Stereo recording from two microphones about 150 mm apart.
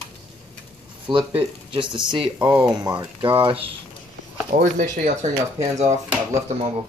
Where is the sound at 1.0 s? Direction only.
35° right (ahead or behind).